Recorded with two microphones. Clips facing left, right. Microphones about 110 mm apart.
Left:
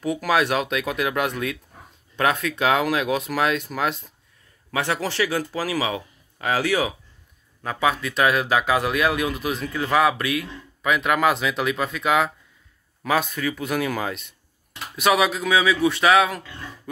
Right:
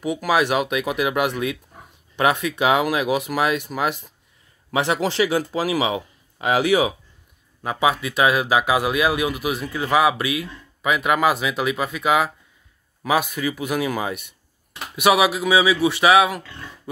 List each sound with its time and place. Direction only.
0.0 s speech: 10° right (ahead or behind)
4.6 s speech: 20° right (ahead or behind)